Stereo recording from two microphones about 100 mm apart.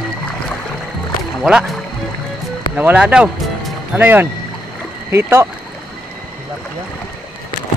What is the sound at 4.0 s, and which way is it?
Speech, 20° right (ahead or behind).